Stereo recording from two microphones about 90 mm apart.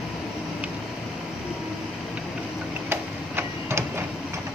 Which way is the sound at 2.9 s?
25° right (ahead or behind).